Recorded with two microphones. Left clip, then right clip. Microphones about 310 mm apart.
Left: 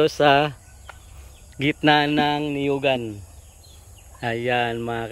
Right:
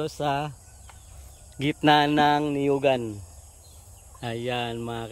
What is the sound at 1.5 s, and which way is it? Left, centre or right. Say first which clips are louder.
Speech: left 2 dB; centre.